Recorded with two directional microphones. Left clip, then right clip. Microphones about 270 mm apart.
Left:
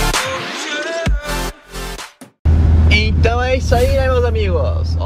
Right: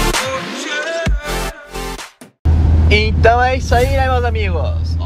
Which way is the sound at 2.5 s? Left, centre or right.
Centre.